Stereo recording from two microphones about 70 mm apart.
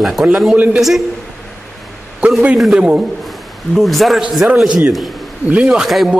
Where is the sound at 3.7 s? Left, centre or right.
Centre.